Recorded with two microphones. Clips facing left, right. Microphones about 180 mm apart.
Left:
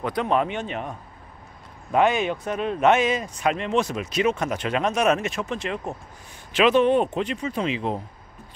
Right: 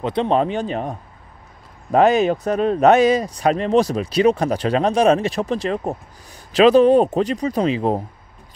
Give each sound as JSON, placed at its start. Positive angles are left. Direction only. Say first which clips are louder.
{"t": 0.0, "sound": "speech", "louder": "right 5 dB", "side_deg": -25}